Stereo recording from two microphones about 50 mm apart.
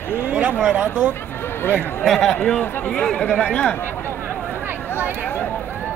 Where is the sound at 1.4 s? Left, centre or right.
Left.